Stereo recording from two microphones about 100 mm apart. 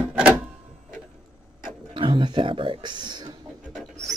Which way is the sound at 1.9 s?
55° right (ahead or behind).